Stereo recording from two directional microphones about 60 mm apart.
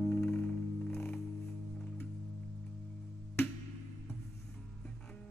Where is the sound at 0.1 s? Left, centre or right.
Left.